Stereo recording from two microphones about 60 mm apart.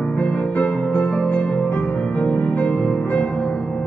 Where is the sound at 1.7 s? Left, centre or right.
Left.